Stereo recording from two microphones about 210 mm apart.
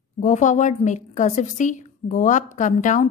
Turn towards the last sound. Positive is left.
turn(degrees=35)  # may be behind; listen again after turning